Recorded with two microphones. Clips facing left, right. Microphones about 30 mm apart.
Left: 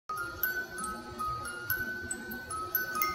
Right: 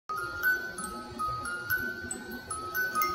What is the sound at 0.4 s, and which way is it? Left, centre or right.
Music, right.